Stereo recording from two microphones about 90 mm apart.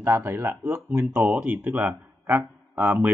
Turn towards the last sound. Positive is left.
turn(degrees=-20)  # may be behind; listen again after turning